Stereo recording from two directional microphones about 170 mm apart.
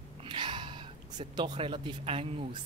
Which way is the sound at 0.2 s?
30° right (ahead or behind).